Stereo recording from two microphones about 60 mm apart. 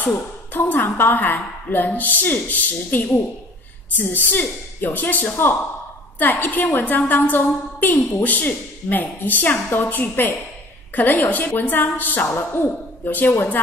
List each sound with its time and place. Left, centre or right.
0.0 s a woman's voice: left